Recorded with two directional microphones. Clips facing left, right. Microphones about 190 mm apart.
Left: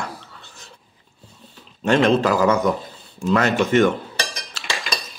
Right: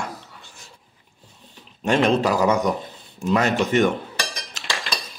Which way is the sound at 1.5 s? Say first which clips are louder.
Left 2 dB; 15° right (ahead or behind).